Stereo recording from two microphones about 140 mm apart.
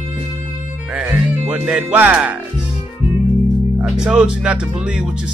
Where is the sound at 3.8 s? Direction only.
5° right (ahead or behind).